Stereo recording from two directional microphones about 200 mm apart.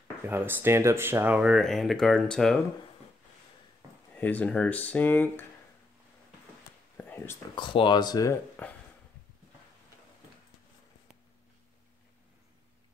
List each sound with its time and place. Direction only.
0.3 s speech: 10° right (ahead or behind)
4.1 s speech: 10° left (ahead or behind)
7.0 s a sound: 10° left (ahead or behind)
7.5 s speech: 25° left (ahead or behind)